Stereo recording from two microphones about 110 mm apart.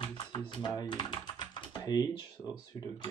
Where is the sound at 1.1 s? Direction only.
40° left (ahead or behind).